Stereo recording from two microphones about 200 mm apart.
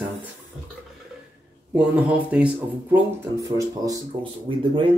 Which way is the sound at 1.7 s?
5° right (ahead or behind).